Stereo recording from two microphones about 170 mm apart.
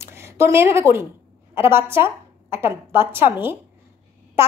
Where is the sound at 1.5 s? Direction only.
15° right (ahead or behind).